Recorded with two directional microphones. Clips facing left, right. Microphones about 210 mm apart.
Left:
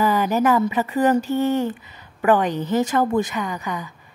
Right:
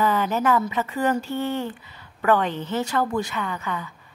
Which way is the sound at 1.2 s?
40° left (ahead or behind).